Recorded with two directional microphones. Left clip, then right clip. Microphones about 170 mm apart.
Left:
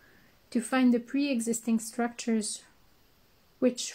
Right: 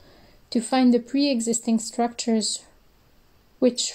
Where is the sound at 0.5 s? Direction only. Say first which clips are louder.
Right 6 dB; 15° right (ahead or behind).